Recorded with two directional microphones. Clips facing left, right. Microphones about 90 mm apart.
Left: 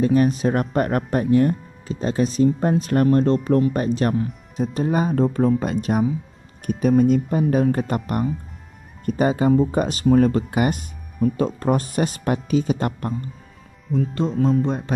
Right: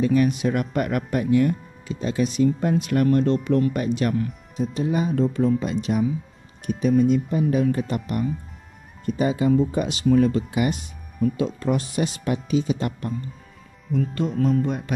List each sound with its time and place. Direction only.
0.0 s speech: 40° left (ahead or behind)
13.9 s speech: 30° left (ahead or behind)